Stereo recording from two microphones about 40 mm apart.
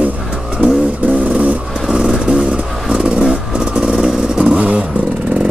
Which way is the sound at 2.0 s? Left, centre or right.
Centre.